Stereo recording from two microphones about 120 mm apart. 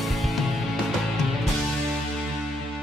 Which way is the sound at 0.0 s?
Centre (ahead or behind).